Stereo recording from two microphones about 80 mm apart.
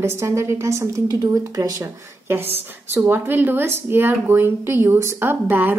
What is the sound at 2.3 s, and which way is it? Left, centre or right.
A woman's voice, right.